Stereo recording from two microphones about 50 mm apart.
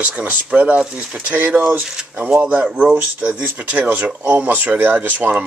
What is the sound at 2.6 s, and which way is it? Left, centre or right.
Speech, right.